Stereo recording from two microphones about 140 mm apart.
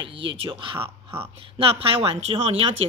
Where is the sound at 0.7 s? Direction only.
15° right (ahead or behind).